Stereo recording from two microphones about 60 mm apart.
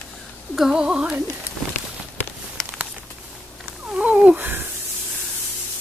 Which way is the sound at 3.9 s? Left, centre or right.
Centre.